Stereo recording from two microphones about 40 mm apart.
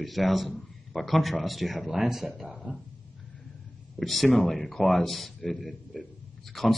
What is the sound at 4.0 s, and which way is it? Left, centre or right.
Speech, centre.